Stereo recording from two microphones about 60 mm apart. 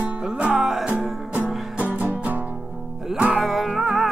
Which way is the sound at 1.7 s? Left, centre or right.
Right.